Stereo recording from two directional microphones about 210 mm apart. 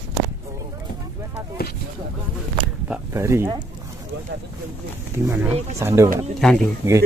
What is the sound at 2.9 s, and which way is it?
Speech, 10° right (ahead or behind).